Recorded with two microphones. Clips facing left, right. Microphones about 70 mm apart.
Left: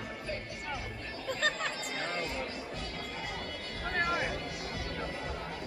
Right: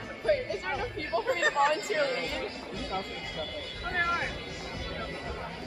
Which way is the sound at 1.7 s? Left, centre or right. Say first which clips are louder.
Right 10 dB; right.